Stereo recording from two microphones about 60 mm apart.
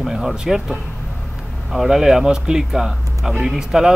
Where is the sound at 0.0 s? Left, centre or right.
Centre.